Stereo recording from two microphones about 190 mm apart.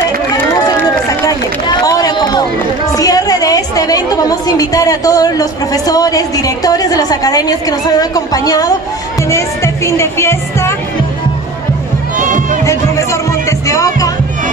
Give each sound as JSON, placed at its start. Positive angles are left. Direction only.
{"t": 0.7, "sound": "run", "side_deg": 20}
{"t": 2.9, "sound": "a woman's voice", "side_deg": 20}
{"t": 12.2, "sound": "run", "side_deg": -45}
{"t": 12.6, "sound": "music", "side_deg": 15}